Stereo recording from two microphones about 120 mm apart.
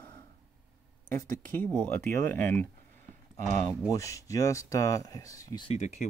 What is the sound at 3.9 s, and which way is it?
Speech, 25° left (ahead or behind).